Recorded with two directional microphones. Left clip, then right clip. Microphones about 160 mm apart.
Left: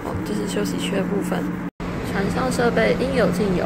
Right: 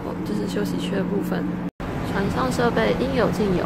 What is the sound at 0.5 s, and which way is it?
A woman's voice, 15° right (ahead or behind).